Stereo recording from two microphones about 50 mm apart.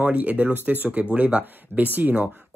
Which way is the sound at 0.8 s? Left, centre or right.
Right.